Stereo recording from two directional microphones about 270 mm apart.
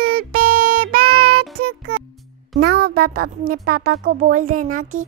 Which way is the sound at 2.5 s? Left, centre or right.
Right.